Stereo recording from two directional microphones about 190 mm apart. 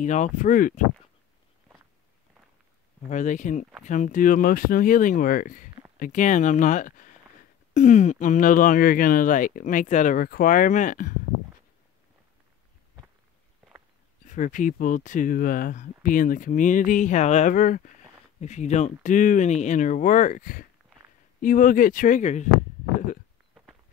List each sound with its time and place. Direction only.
0.0 s speech: 40° left (ahead or behind)
3.1 s speech: 40° left (ahead or behind)
14.2 s speech: 40° left (ahead or behind)
23.5 s a sound: 5° right (ahead or behind)